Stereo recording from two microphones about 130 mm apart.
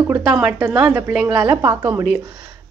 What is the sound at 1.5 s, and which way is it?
Speech, 15° right (ahead or behind).